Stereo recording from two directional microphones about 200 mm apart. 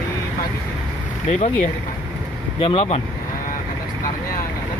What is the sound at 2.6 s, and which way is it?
Speech, 25° left (ahead or behind).